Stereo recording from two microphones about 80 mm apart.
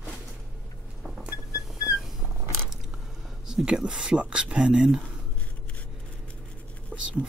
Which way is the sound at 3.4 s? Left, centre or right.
Centre.